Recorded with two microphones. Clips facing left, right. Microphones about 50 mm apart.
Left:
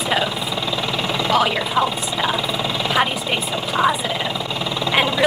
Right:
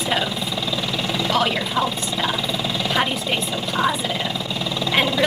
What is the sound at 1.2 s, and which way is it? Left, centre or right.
Speech, centre.